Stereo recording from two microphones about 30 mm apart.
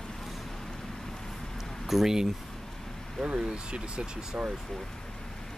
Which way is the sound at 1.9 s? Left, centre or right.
Centre.